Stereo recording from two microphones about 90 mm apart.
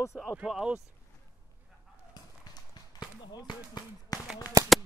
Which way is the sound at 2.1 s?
50° left (ahead or behind).